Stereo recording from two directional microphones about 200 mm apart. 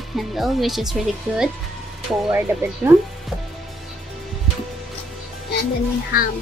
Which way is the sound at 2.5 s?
10° right (ahead or behind).